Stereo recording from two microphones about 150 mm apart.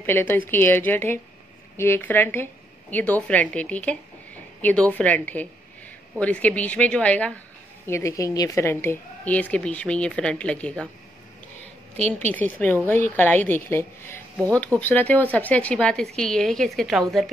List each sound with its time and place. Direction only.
0.0 s a woman's voice: 15° left (ahead or behind)
12.3 s a woman's voice: 10° left (ahead or behind)